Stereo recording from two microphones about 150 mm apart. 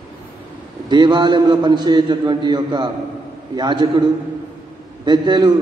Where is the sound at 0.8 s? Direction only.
30° right (ahead or behind).